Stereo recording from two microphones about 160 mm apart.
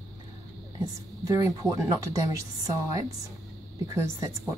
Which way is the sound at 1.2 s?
20° right (ahead or behind).